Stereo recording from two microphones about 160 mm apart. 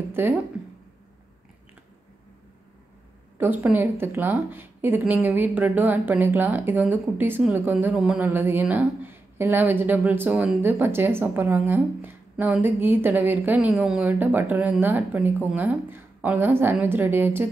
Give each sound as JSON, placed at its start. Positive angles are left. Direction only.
{"t": 0.2, "sound": "a woman's voice", "side_deg": -15}
{"t": 3.3, "sound": "a woman's voice", "side_deg": -10}